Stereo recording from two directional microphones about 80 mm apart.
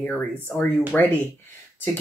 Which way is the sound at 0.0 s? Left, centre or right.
Centre.